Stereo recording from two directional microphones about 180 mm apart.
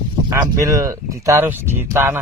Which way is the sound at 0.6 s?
15° right (ahead or behind).